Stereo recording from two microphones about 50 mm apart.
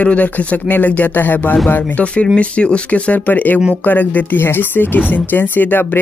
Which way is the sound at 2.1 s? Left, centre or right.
Left.